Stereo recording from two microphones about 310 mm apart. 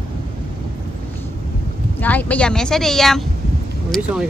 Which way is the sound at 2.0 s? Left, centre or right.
Centre.